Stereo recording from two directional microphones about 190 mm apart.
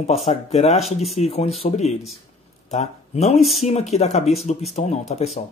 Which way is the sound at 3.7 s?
35° left (ahead or behind).